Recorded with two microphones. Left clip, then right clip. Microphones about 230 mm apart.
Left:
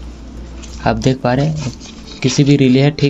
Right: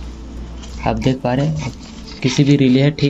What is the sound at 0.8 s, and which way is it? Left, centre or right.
Speech, centre.